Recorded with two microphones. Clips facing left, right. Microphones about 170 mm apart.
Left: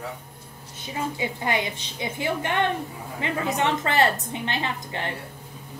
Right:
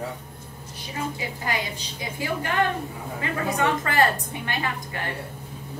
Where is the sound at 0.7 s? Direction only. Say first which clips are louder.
Left 2 dB; 25° left (ahead or behind).